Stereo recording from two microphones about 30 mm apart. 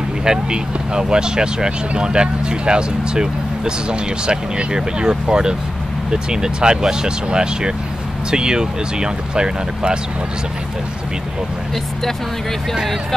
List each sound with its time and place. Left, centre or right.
0.2 s speech: right